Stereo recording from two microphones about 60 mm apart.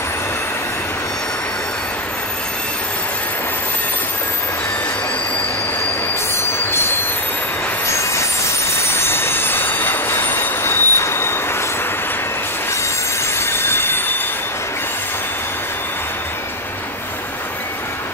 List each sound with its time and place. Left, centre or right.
7.9 s train: left
13.4 s train: left